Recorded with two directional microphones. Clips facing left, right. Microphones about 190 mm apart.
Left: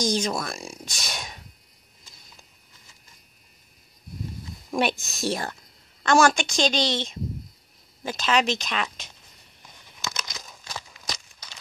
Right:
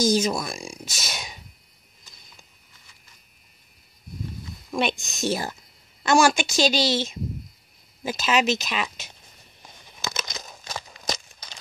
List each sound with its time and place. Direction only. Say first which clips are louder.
0.0 s a woman's voice: right 4 dB; 5° right (ahead or behind)
4.6 s speech: left 1 dB; 10° left (ahead or behind)
5.1 s a woman's voice: right 2 dB; centre (ahead or behind)
10.0 s crumpling: right 3 dB; 25° right (ahead or behind)
10.8 s a sound: right 3 dB; 30° right (ahead or behind)